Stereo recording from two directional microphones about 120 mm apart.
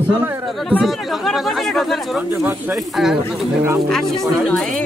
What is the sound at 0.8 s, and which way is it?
Speech, centre (ahead or behind).